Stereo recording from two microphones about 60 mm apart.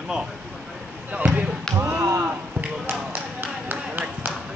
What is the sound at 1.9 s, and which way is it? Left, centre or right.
Chop, right.